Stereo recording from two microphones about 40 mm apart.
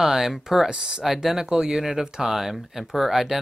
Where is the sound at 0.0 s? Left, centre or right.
Centre.